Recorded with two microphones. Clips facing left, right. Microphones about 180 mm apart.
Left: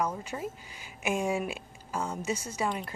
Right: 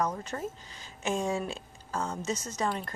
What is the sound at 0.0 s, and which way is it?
A woman's voice, 10° left (ahead or behind).